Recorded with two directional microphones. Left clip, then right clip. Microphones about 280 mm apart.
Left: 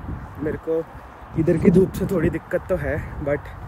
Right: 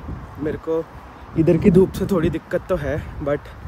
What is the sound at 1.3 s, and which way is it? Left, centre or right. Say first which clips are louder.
Speech: right 2 dB; centre.